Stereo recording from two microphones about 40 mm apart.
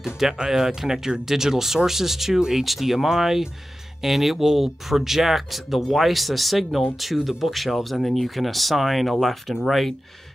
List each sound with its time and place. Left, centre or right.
0.0 s speech: centre